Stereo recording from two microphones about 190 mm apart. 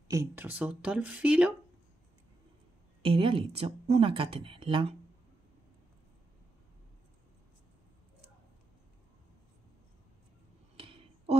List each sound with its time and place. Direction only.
0.1 s speech: 15° right (ahead or behind)
3.0 s speech: 30° right (ahead or behind)
10.8 s a sound: 30° right (ahead or behind)